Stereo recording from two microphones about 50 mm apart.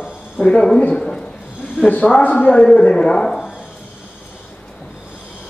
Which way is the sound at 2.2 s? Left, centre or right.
Left.